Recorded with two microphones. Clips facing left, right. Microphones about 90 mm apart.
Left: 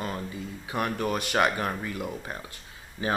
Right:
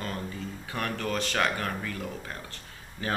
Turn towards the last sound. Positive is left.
turn(degrees=15)  # may be behind; listen again after turning